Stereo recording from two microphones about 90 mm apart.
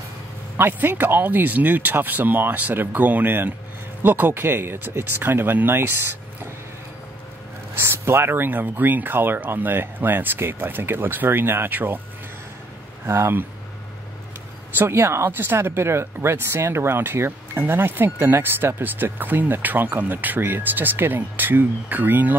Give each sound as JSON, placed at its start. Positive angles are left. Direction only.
{"t": 0.6, "sound": "speech", "side_deg": -20}
{"t": 7.7, "sound": "speech", "side_deg": -25}
{"t": 13.0, "sound": "speech", "side_deg": -30}
{"t": 14.8, "sound": "speech", "side_deg": -25}